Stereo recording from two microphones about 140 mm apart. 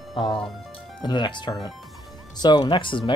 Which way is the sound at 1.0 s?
30° left (ahead or behind).